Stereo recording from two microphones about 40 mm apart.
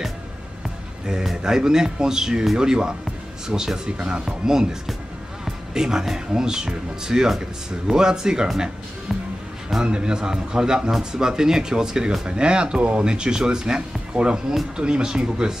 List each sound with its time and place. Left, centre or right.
1.4 s speech: centre
9.8 s speech: right